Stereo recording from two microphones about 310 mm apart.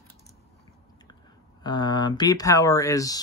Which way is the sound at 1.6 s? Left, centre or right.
Centre.